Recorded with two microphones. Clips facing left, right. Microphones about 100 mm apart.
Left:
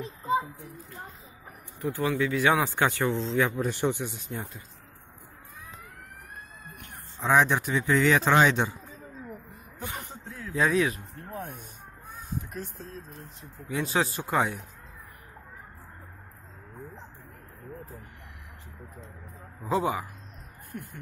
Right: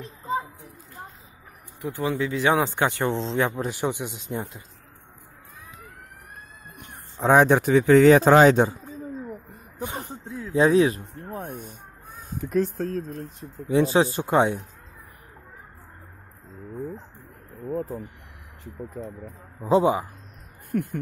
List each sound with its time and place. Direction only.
0.0 s a sound: 5° left (ahead or behind)
1.8 s speech: 20° right (ahead or behind)
3.6 s a man's voice: 10° right (ahead or behind)
7.2 s speech: 45° right (ahead or behind)
8.1 s speech: 40° right (ahead or behind)
9.8 s a sound: 25° right (ahead or behind)
10.5 s speech: 30° right (ahead or behind)
12.4 s speech: 90° right; by 13.2 s 70° right (ahead or behind)
13.7 s speech: 30° right (ahead or behind)
19.6 s speech: 25° right (ahead or behind)
20.7 s speech: 70° right (ahead or behind)